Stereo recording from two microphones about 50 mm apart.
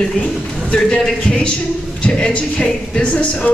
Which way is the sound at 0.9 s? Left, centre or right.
Centre.